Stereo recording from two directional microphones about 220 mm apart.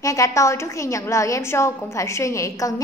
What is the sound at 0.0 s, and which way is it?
A woman's voice, 15° left (ahead or behind).